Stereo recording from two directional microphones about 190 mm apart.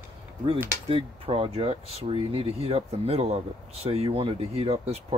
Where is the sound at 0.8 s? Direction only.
30° right (ahead or behind).